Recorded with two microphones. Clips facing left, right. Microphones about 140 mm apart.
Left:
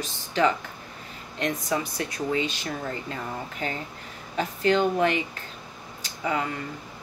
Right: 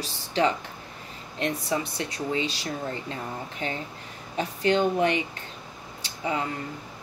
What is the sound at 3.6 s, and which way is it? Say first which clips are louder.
Speech: even; 35° left (ahead or behind).